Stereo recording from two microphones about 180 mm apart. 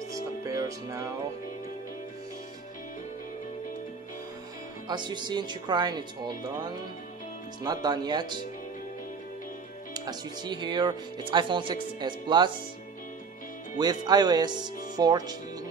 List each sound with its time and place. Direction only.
0.5 s music: 15° right (ahead or behind)
4.8 s speech: 25° right (ahead or behind)
9.9 s speech: 25° right (ahead or behind)
13.7 s speech: 20° right (ahead or behind)